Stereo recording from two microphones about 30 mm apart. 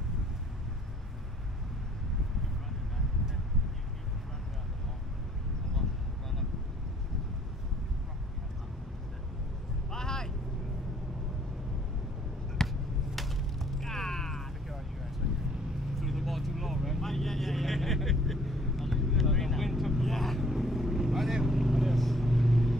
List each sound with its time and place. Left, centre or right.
5.8 s a sound: centre
9.8 s vehicle: centre
12.6 s a sound: centre
15.2 s vehicle: right
15.9 s vehicle: centre
17.0 s vehicle: centre